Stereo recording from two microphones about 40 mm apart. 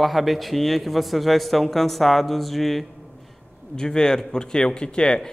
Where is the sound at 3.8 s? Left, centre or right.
Centre.